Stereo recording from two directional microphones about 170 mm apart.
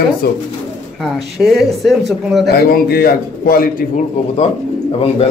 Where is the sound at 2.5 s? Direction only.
65° left (ahead or behind).